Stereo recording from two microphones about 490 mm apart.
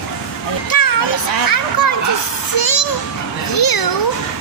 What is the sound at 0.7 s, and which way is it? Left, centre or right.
A child's voice, left.